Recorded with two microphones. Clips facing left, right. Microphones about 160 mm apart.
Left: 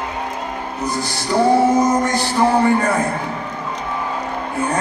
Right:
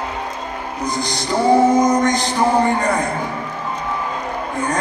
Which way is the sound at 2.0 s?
20° right (ahead or behind).